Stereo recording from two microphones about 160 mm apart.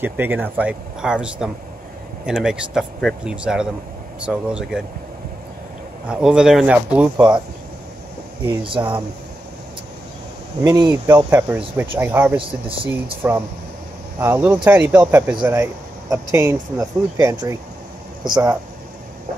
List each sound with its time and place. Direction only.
0.0 s speech: 10° right (ahead or behind)
6.0 s speech: 5° right (ahead or behind)
8.8 s speech: 20° right (ahead or behind)
10.6 s speech: 25° right (ahead or behind)
11.1 s speech: 10° right (ahead or behind)
12.4 s speech: 35° right (ahead or behind)
12.8 s speech: 15° right (ahead or behind)